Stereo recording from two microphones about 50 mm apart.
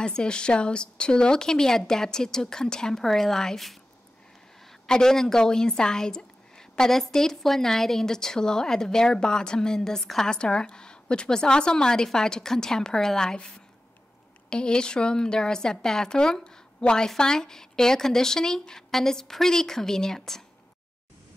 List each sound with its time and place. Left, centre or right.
0.0 s a woman's voice: centre
4.8 s a woman's voice: centre
14.5 s a woman's voice: centre